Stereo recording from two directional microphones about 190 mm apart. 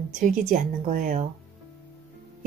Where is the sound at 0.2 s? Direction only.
45° right (ahead or behind).